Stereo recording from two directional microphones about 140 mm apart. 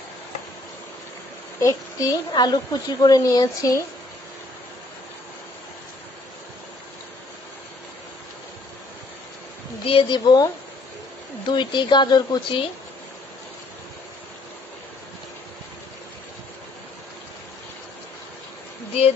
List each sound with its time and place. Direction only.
1.6 s a woman's voice: 25° left (ahead or behind)
9.8 s speech: 35° left (ahead or behind)
11.5 s speech: 35° left (ahead or behind)